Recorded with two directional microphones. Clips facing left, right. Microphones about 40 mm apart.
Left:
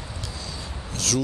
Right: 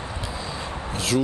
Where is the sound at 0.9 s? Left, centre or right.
Right.